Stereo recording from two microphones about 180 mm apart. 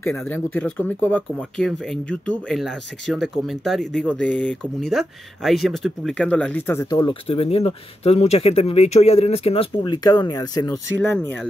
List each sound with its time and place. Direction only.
0.0 s speech: 10° left (ahead or behind)
11.0 s speech: 10° left (ahead or behind)